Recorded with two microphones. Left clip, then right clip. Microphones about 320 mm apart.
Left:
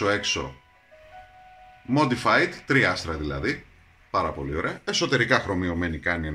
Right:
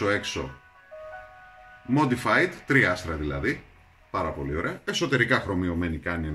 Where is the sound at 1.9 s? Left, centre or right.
Centre.